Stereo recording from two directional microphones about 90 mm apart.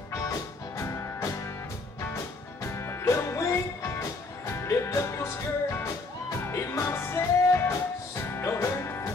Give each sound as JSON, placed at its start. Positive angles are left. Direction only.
{"t": 0.2, "sound": "music", "side_deg": 35}
{"t": 2.6, "sound": "music", "side_deg": 30}